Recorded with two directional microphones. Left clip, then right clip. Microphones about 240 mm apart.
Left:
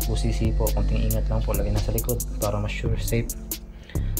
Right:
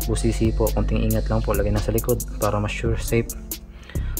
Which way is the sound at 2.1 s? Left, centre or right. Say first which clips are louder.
Right 5 dB; centre.